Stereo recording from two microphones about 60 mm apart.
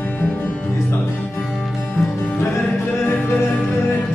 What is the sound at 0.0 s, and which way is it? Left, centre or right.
Music, left.